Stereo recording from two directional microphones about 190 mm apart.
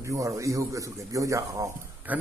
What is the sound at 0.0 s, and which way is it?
Speech, 15° right (ahead or behind).